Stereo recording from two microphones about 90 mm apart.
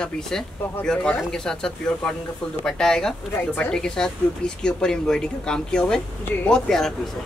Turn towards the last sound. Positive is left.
turn(degrees=5)  # may be behind; listen again after turning